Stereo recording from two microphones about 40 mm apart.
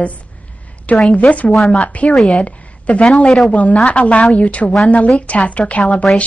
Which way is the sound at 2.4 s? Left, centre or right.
Left.